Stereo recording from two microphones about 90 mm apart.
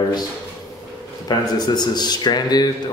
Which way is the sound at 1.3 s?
50° left (ahead or behind).